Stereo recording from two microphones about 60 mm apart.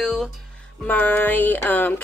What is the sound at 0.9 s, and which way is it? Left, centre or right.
Speech, left.